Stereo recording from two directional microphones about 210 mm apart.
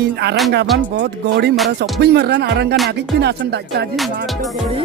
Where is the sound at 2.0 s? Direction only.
50° right (ahead or behind).